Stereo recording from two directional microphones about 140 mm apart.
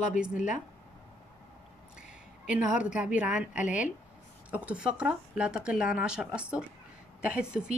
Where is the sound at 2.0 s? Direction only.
5° right (ahead or behind).